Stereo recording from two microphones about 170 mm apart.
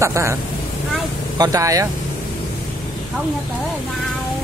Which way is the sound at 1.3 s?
20° right (ahead or behind).